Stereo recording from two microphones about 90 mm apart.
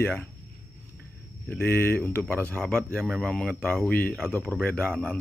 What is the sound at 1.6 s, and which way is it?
Speech, 25° left (ahead or behind).